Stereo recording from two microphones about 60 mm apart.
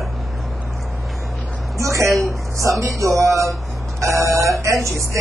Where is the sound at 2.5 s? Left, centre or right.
Right.